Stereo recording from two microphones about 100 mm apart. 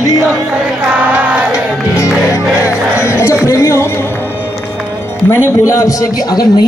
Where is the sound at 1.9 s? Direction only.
30° left (ahead or behind).